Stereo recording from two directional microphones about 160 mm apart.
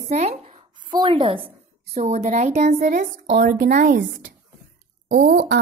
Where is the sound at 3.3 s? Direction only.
75° right (ahead or behind).